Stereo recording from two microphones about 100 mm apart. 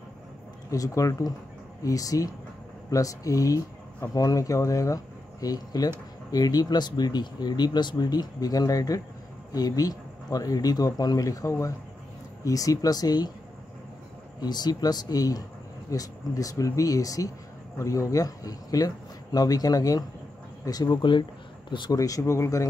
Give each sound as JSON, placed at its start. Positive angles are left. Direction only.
{"t": 0.7, "sound": "speech", "side_deg": 35}
{"t": 14.4, "sound": "speech", "side_deg": 45}
{"t": 21.9, "sound": "speech", "side_deg": 35}